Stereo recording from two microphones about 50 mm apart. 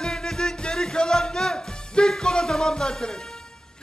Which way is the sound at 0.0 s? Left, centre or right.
Centre.